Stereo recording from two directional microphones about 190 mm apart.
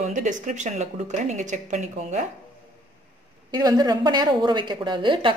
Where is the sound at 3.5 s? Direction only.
20° right (ahead or behind).